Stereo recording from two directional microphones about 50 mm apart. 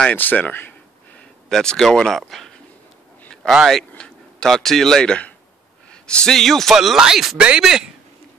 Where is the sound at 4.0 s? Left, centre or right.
Centre.